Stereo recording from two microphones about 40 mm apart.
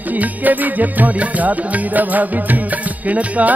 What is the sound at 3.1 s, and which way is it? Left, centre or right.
Music, right.